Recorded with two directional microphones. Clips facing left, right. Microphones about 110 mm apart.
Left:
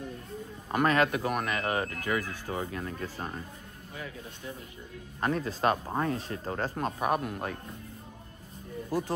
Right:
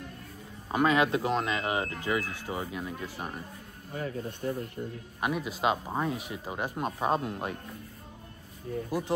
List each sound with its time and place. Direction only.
0.7 s speech: 15° right (ahead or behind)
3.9 s speech: 45° right (ahead or behind)
5.2 s speech: 15° right (ahead or behind)
8.9 s speech: 15° right (ahead or behind)